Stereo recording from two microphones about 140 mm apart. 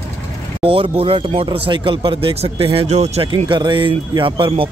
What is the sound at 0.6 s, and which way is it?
Speech, 40° right (ahead or behind).